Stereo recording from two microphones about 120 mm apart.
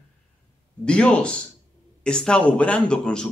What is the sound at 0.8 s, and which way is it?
A man's voice, 10° left (ahead or behind).